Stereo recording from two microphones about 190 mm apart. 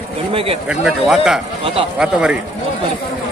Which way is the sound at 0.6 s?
Centre (ahead or behind).